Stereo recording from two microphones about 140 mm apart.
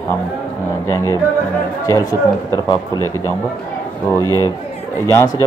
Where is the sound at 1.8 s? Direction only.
20° left (ahead or behind).